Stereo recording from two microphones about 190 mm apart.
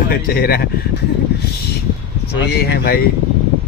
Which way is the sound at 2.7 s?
55° left (ahead or behind).